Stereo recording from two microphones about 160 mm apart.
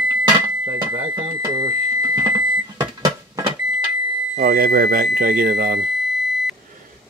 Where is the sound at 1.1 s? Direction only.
25° right (ahead or behind).